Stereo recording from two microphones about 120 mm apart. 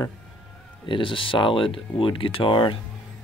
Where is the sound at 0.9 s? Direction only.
45° left (ahead or behind).